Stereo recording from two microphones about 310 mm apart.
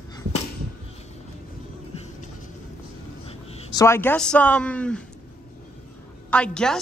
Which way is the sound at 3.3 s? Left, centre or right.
Centre.